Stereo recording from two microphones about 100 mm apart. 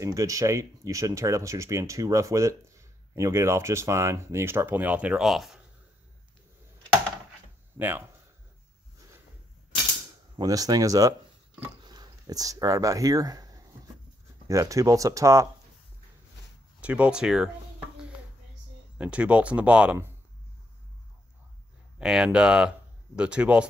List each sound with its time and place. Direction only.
0.0 s speech: 35° right (ahead or behind); by 5.6 s centre (ahead or behind)
7.8 s speech: 20° right (ahead or behind)
10.4 s speech: 35° right (ahead or behind)
16.8 s speech: 15° right (ahead or behind)
18.9 s speech: 15° right (ahead or behind)
21.9 s speech: 10° right (ahead or behind)